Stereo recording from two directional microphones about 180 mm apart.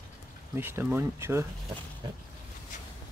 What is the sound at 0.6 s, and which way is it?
Speech, 10° right (ahead or behind).